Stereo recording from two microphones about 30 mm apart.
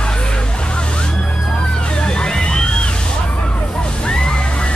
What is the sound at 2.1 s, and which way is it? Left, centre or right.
Slosh, left.